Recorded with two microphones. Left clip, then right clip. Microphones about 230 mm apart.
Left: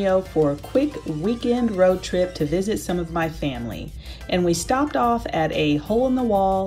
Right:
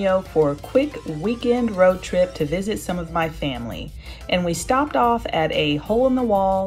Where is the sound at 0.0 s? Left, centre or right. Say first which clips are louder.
Right 1 dB; centre.